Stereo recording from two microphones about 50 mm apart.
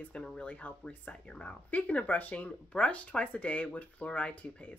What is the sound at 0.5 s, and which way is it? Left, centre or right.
Speech, left.